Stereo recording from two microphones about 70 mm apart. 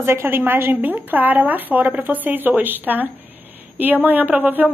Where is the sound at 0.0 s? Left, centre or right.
Right.